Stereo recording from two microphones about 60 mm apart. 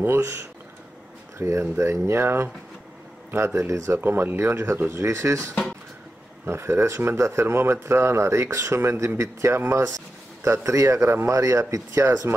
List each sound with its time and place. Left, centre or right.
1.4 s speech: right
4.0 s speech: right
6.4 s speech: right